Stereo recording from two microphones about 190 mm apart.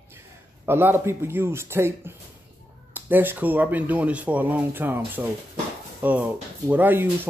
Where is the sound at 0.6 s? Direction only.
10° right (ahead or behind).